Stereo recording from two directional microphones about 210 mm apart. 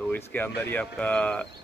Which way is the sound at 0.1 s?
10° left (ahead or behind).